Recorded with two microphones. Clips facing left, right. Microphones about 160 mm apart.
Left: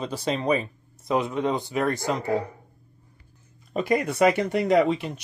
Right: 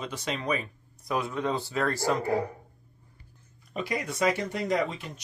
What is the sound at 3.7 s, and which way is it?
Speech, 50° left (ahead or behind).